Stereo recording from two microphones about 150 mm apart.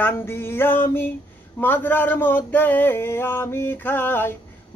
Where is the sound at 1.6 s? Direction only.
10° left (ahead or behind).